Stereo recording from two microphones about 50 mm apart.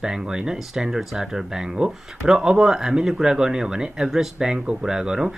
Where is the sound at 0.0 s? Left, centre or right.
Centre.